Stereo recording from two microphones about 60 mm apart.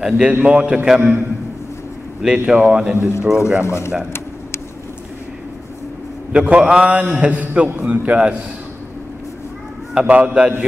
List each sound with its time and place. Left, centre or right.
0.3 s a man's voice: right
2.2 s speech: centre
3.0 s speech: left
3.3 s speech: centre
3.6 s speech: left
6.3 s a man's voice: centre
10.0 s a man's voice: right